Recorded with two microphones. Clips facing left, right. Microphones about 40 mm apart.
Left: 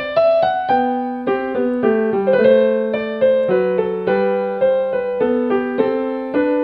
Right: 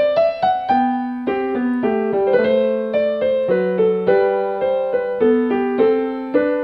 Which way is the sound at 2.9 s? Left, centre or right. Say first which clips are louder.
Left 1 dB; centre.